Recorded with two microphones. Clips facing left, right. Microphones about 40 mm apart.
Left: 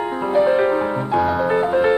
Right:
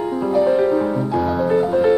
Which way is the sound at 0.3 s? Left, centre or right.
Left.